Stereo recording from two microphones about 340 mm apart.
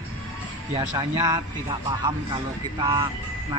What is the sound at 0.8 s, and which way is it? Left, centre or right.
Speech, centre.